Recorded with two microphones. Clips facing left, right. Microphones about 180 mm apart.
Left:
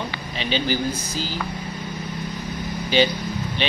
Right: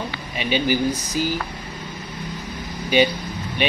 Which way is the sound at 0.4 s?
10° right (ahead or behind).